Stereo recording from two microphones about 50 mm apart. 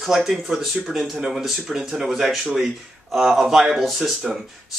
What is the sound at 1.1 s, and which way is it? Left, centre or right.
Speech, centre.